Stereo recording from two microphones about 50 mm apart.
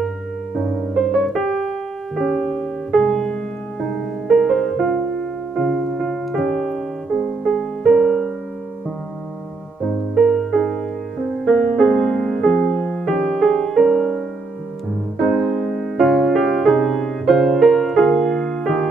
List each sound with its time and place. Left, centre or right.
0.9 s piano: centre
4.3 s music: centre
7.2 s music: centre
10.1 s music: centre